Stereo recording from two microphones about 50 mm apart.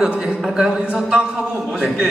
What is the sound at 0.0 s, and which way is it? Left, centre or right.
A man's voice, centre.